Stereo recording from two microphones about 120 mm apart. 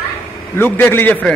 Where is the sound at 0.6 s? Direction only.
15° left (ahead or behind).